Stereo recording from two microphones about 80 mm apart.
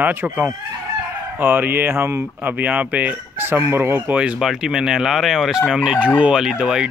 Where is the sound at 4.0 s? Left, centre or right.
Centre.